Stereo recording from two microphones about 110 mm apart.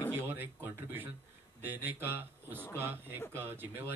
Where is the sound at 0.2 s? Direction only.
20° right (ahead or behind).